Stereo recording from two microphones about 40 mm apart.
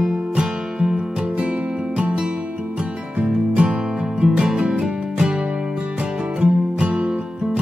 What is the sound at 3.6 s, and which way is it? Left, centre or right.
Music, centre.